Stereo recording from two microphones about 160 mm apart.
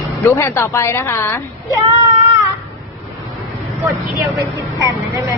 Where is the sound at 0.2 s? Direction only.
15° left (ahead or behind).